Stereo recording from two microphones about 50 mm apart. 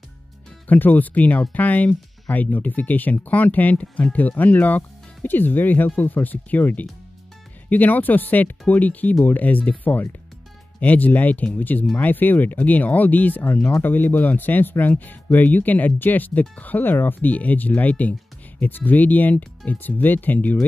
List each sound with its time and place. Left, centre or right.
0.7 s speech: left